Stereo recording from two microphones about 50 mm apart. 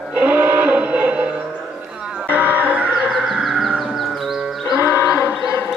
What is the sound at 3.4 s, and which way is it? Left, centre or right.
Music, centre.